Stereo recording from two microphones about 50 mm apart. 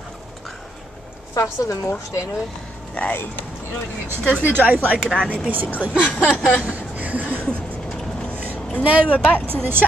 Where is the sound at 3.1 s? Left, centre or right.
Left.